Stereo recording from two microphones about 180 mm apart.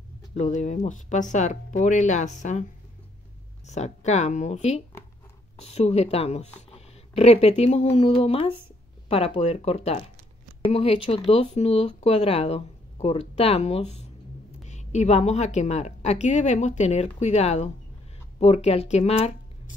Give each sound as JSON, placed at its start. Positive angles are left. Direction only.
{"t": 0.3, "sound": "speech", "side_deg": 40}
{"t": 3.6, "sound": "a woman's voice", "side_deg": 40}